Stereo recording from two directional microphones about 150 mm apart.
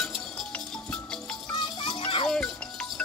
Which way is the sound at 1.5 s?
35° left (ahead or behind).